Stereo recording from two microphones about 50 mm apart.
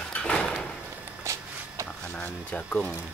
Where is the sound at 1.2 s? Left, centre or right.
Right.